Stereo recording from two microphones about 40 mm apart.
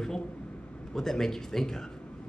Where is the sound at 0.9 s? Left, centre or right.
Centre.